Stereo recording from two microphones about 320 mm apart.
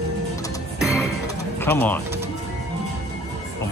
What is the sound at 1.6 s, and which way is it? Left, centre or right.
Speech, centre.